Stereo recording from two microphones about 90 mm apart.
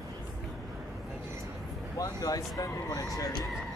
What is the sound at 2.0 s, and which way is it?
Speech, 45° left (ahead or behind).